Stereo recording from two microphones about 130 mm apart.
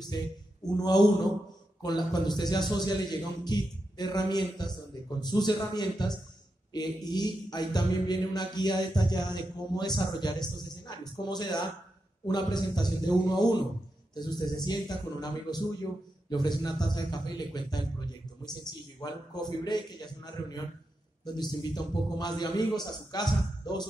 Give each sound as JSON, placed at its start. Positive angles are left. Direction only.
{"t": 0.1, "sound": "a man's voice", "side_deg": 30}